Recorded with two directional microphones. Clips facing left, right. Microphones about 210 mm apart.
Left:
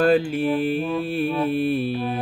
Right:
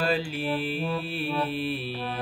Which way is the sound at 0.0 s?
50° left (ahead or behind).